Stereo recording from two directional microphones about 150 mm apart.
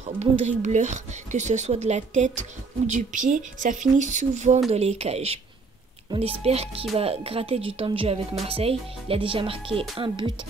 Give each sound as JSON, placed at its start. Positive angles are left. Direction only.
{"t": 0.0, "sound": "a woman's voice", "side_deg": -50}